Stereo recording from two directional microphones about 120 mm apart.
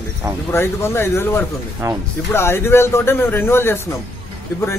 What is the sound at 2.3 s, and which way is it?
Speech, 20° left (ahead or behind).